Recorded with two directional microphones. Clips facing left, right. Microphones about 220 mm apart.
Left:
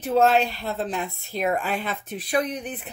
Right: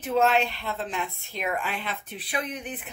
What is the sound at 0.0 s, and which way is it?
A woman's voice, 40° left (ahead or behind).